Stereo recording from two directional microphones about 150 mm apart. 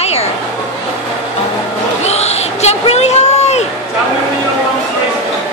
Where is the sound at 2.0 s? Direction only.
45° left (ahead or behind).